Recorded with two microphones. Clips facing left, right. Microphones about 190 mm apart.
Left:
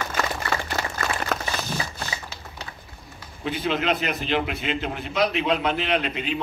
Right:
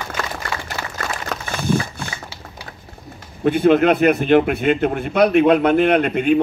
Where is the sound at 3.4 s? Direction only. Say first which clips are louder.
Right 11 dB; 55° right (ahead or behind).